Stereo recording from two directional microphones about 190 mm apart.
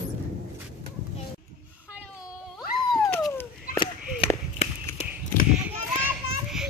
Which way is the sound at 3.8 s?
30° left (ahead or behind).